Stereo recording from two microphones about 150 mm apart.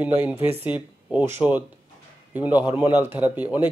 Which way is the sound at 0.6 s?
10° right (ahead or behind).